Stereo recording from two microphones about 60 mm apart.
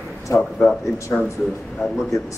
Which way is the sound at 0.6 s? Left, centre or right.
Centre.